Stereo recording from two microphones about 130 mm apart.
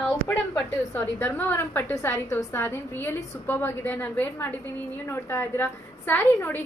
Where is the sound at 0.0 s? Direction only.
15° left (ahead or behind).